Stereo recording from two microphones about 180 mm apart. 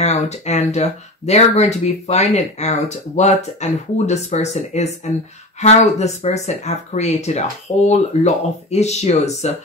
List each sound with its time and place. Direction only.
0.0 s speech: 40° left (ahead or behind)